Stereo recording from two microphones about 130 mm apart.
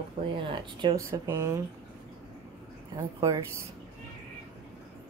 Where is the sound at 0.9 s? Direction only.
20° right (ahead or behind).